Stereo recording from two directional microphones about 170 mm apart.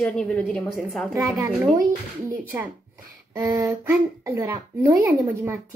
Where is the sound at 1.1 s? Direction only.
15° right (ahead or behind).